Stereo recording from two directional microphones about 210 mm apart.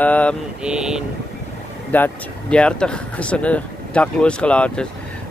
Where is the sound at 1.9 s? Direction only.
10° left (ahead or behind).